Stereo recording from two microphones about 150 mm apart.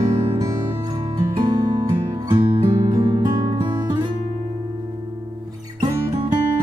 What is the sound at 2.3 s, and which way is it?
Music, 35° right (ahead or behind).